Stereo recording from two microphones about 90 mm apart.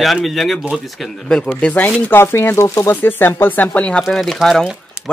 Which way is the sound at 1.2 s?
10° left (ahead or behind).